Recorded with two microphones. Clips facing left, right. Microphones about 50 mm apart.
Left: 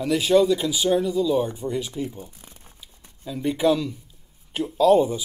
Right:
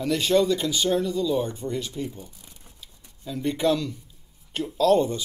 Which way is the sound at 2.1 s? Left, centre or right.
Left.